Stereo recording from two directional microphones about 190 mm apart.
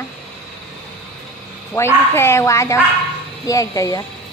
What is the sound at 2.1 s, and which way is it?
Speech, 15° left (ahead or behind).